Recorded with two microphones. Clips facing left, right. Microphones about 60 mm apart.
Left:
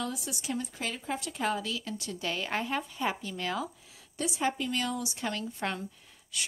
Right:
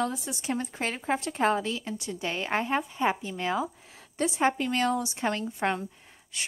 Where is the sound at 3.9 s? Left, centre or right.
Right.